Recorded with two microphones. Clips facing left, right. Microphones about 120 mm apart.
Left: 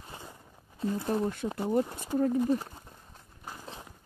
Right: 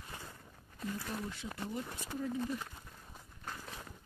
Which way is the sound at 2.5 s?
35° left (ahead or behind).